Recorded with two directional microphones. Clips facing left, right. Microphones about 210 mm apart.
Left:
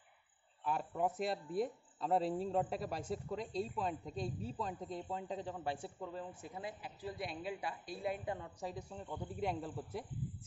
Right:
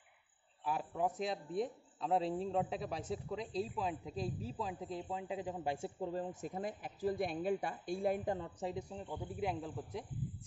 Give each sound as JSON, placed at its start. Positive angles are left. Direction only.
{"t": 0.7, "sound": "speech", "side_deg": -5}
{"t": 6.1, "sound": "speech", "side_deg": -40}
{"t": 8.4, "sound": "a woman's voice", "side_deg": -25}
{"t": 9.1, "sound": "speech", "side_deg": 0}